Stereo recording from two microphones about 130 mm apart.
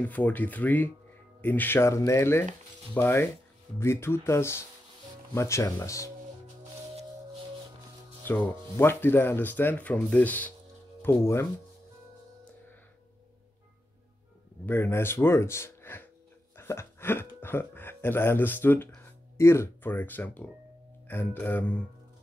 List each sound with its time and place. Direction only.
0.0 s speech: 10° left (ahead or behind)
8.3 s speech: 20° left (ahead or behind)
14.7 s speech: 15° left (ahead or behind)
16.5 s a sound: 20° left (ahead or behind)
17.4 s speech: 15° left (ahead or behind)